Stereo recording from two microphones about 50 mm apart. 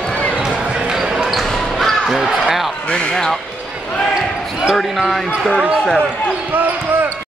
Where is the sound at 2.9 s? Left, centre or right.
Left.